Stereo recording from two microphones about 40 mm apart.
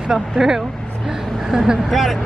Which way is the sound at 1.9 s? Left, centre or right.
Centre.